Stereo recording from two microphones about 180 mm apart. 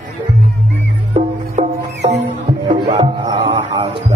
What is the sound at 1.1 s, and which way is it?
Music, 35° right (ahead or behind).